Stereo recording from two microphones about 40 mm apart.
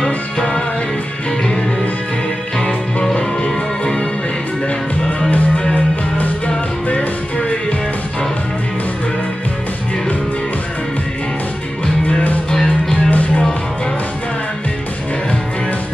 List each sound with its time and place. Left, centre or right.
2.6 s music: centre
6.1 s music: left
11.8 s music: left
12.9 s music: left